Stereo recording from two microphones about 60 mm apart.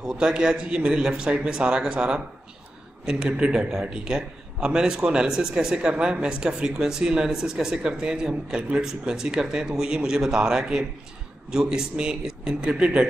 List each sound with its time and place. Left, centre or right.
0.0 s a man's voice: centre